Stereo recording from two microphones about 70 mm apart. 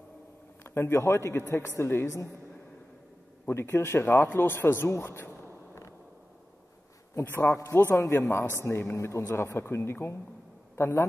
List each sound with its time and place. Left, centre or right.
0.7 s a man's voice: left
3.4 s a man's voice: left
7.4 s a man's voice: left